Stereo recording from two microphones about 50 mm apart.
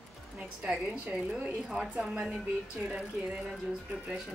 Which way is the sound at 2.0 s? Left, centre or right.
Right.